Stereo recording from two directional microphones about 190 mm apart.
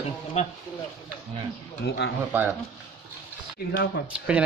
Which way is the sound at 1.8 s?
70° left (ahead or behind).